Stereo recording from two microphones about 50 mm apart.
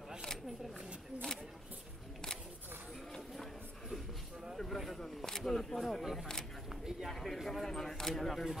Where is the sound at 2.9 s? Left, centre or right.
Centre.